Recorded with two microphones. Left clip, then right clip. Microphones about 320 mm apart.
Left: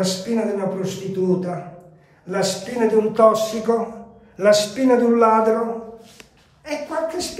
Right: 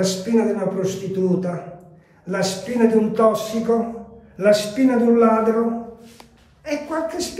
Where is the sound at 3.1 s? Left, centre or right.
Centre.